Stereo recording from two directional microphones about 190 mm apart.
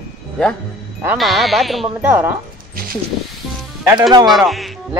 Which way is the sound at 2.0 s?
10° right (ahead or behind).